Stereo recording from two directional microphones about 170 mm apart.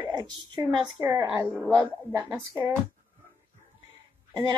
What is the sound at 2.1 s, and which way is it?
Speech, 15° right (ahead or behind).